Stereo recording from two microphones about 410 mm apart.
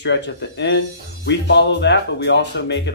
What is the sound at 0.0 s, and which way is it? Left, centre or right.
Speech, left.